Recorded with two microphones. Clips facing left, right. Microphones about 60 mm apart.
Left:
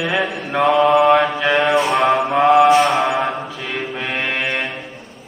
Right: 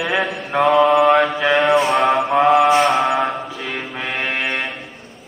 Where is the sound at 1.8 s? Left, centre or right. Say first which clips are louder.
Even; centre.